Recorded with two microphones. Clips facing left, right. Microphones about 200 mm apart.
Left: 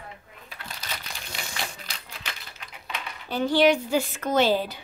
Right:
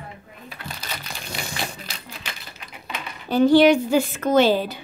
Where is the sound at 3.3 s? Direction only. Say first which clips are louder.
Right 6 dB; 45° right (ahead or behind).